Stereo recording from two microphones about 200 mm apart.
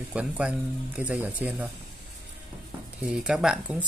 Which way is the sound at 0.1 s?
5° right (ahead or behind).